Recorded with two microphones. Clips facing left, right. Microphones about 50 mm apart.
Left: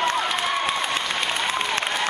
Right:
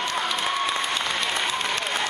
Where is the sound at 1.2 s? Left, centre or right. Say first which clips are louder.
Left 1 dB; left.